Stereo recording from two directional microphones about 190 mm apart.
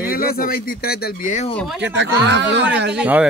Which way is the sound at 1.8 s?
70° right (ahead or behind).